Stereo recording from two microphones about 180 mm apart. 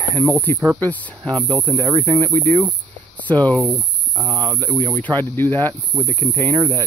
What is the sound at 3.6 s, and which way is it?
Speech, 10° right (ahead or behind).